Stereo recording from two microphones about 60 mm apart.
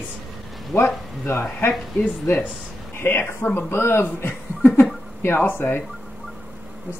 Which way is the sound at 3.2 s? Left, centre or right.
Left.